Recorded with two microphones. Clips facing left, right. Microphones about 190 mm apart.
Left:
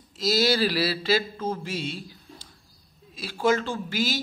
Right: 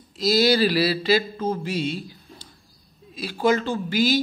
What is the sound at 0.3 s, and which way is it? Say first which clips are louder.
Speech: right 4 dB; centre (ahead or behind).